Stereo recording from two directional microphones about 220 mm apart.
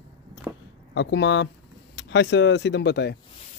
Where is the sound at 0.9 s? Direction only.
55° left (ahead or behind).